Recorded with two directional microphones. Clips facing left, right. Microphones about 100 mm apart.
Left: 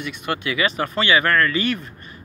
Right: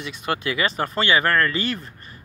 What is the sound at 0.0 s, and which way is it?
Speech, 30° right (ahead or behind).